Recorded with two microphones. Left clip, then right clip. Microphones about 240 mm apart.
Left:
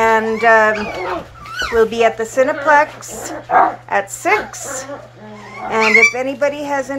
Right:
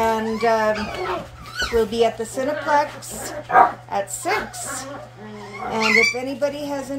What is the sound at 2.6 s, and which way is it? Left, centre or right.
Speech, left.